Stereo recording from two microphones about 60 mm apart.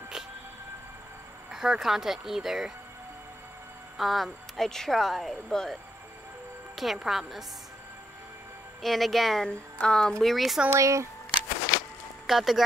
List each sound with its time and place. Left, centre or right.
1.5 s speech: centre
4.0 s speech: centre
6.7 s music: centre
7.0 s speech: centre
8.8 s speech: centre
9.5 s speech: centre
10.2 s speech: centre
10.7 s speech: right
12.3 s speech: centre